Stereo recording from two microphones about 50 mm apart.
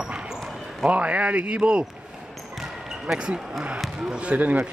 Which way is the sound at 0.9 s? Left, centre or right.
Right.